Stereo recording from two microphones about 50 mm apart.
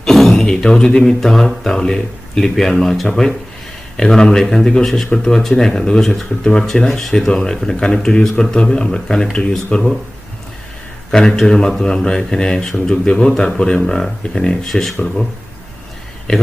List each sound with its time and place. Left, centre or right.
0.0 s speech: centre
11.1 s speech: centre
16.3 s speech: centre